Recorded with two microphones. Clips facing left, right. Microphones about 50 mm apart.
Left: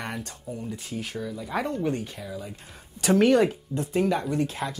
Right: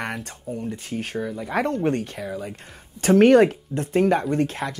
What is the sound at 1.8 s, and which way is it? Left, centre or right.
Speech, right.